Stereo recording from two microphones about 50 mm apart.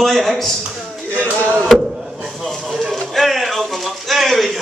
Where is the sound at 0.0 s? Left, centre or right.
Centre.